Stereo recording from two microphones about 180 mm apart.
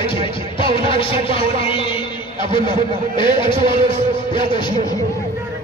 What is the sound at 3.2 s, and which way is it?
Speech, 25° left (ahead or behind).